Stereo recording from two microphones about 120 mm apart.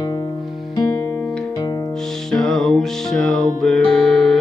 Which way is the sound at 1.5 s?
30° left (ahead or behind).